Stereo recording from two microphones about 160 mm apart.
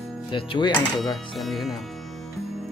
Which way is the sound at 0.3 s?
30° left (ahead or behind).